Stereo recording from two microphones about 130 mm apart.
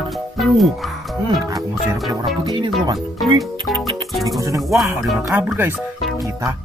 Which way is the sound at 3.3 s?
Centre (ahead or behind).